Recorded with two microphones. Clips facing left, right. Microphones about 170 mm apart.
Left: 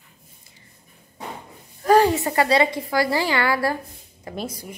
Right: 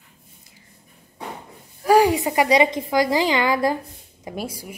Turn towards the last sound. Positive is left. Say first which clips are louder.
# right 1 dB
turn(degrees=-10)  # may be behind; listen again after turning